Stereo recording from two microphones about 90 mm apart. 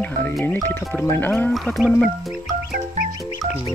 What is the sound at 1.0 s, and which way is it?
Speech, 25° left (ahead or behind).